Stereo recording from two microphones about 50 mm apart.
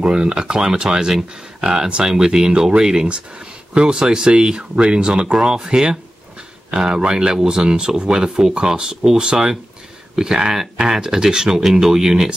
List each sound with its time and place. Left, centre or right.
0.0 s speech: centre